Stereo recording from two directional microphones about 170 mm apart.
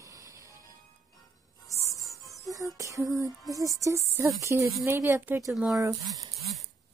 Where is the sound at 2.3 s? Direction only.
20° right (ahead or behind).